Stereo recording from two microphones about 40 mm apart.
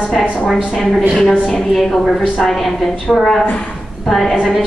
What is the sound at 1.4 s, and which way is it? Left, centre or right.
A woman's voice, centre.